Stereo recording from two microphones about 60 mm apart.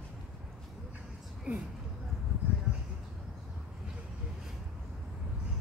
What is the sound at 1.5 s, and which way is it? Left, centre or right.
Speech, right.